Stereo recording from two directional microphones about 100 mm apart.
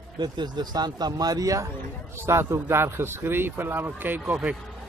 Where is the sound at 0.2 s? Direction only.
45° right (ahead or behind).